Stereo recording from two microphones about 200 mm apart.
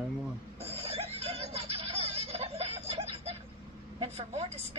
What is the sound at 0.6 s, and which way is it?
Snicker, 30° right (ahead or behind).